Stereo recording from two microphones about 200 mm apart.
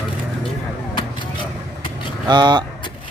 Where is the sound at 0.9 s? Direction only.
25° left (ahead or behind).